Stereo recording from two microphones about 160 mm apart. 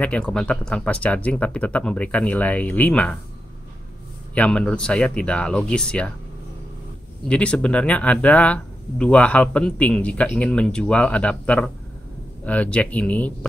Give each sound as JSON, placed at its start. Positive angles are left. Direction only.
{"t": 0.0, "sound": "speech", "side_deg": 10}
{"t": 4.4, "sound": "speech", "side_deg": 10}
{"t": 7.2, "sound": "speech", "side_deg": 5}